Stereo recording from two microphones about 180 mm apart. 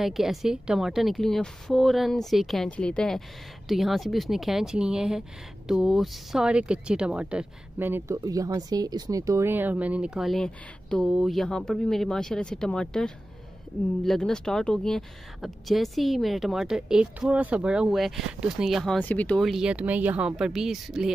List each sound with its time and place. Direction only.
0.0 s speech: centre (ahead or behind)